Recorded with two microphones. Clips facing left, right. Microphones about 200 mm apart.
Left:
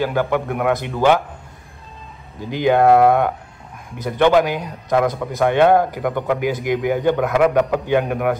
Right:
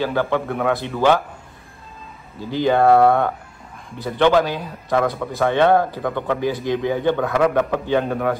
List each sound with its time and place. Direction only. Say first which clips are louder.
0.0 s a man's voice: left 1 dB; 15° left (ahead or behind)
2.5 s a man's voice: left 1 dB; 15° left (ahead or behind)